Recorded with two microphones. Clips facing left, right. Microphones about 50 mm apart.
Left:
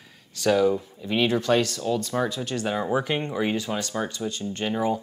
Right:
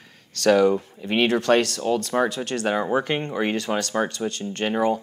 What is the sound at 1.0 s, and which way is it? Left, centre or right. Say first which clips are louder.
Speech: right 2 dB; right.